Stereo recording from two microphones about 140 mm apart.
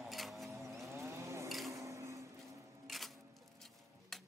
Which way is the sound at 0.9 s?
20° right (ahead or behind).